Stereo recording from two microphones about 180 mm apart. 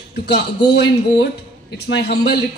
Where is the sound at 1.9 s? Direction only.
65° left (ahead or behind).